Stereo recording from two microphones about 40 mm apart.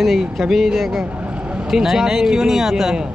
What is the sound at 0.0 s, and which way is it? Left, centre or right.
Speech, centre.